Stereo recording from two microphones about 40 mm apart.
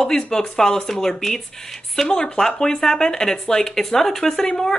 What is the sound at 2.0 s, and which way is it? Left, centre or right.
Speech, left.